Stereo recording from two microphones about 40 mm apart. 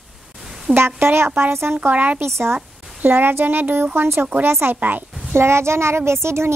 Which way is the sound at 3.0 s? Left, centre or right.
Right.